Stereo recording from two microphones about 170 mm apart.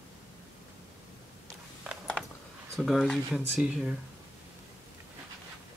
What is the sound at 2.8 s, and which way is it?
Speech, centre (ahead or behind).